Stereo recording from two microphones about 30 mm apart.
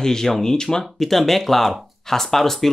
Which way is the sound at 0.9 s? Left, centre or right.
Centre.